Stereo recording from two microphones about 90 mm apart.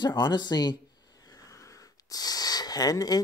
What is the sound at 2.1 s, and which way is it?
Speech, 45° left (ahead or behind).